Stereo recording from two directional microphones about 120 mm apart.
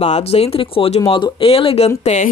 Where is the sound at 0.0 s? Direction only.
60° left (ahead or behind).